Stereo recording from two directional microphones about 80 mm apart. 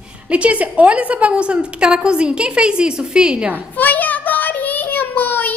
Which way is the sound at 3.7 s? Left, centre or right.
Left.